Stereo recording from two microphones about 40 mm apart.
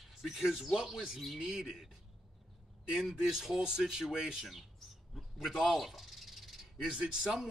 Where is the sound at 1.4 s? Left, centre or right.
Right.